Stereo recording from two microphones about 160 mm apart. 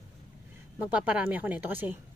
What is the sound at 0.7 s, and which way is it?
Speech, 10° right (ahead or behind).